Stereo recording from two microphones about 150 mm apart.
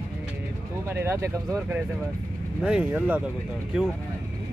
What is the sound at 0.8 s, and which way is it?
Speech, 15° right (ahead or behind).